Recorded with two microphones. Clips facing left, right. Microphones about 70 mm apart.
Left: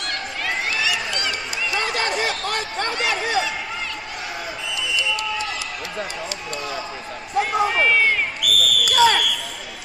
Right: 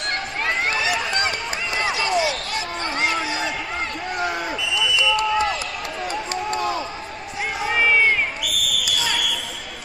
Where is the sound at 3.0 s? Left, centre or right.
Right.